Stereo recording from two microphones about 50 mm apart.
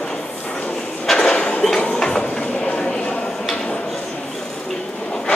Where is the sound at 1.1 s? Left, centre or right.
Centre.